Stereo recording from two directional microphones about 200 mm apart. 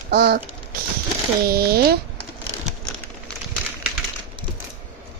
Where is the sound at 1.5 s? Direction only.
50° right (ahead or behind).